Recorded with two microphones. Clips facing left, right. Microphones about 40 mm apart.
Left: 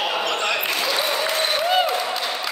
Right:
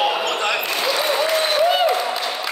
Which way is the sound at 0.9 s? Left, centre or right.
Centre.